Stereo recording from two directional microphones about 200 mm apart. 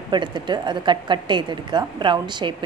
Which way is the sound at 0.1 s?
20° right (ahead or behind).